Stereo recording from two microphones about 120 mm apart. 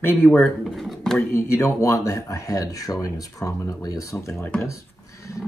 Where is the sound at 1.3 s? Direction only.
25° left (ahead or behind).